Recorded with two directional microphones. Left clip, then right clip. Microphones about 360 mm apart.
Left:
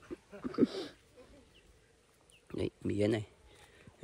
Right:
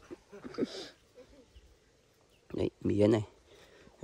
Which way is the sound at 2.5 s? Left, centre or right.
Centre.